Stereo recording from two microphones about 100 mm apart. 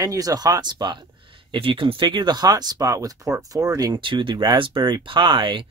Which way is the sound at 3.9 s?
55° right (ahead or behind).